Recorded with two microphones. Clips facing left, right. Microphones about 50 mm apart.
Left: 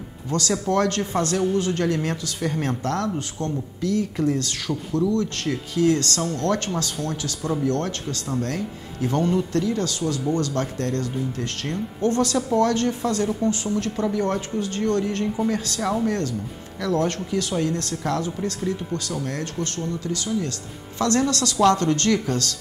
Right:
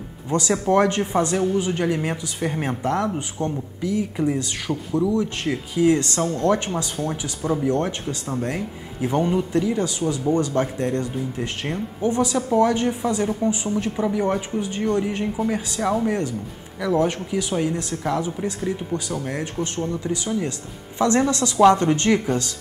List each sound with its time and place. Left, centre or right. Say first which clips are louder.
0.3 s a man's voice: right 3 dB; centre